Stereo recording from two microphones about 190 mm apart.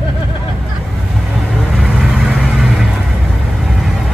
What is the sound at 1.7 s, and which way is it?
Vehicle, 5° right (ahead or behind).